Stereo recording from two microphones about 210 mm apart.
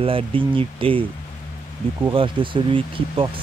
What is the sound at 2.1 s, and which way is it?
Speech, 25° right (ahead or behind).